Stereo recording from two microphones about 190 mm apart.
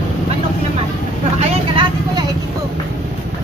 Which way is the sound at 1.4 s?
25° right (ahead or behind).